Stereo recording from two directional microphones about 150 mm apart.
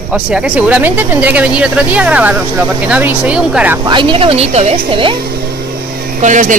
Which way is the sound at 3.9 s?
35° right (ahead or behind).